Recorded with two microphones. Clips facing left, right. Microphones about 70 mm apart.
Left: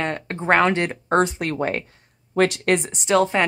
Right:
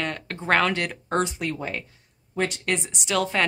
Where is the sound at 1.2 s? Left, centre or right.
Left.